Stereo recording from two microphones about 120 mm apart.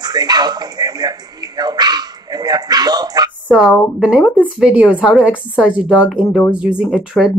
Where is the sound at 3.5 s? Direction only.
Centre (ahead or behind).